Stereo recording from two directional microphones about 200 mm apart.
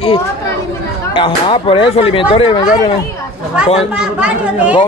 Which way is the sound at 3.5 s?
5° right (ahead or behind).